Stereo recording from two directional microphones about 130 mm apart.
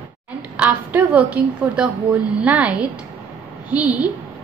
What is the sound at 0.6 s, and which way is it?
A woman's voice, 10° right (ahead or behind).